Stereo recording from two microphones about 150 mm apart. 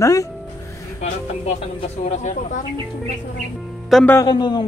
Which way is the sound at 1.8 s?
50° left (ahead or behind).